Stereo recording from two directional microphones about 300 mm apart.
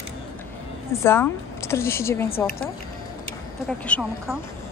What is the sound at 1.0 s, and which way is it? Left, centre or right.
A woman's voice, centre.